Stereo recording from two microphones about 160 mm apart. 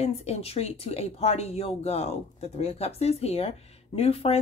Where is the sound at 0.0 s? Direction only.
40° left (ahead or behind).